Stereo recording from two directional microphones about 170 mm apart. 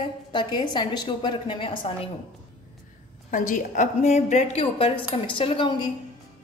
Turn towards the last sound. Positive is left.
turn(degrees=30)  # may be behind; listen again after turning